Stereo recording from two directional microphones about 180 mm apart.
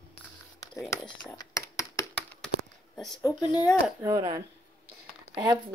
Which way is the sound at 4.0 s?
20° right (ahead or behind).